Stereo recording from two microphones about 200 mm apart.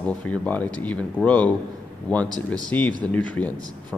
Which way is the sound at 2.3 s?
20° right (ahead or behind).